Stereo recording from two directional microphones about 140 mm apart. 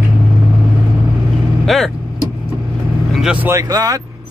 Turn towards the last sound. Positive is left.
turn(degrees=-25)  # may be behind; listen again after turning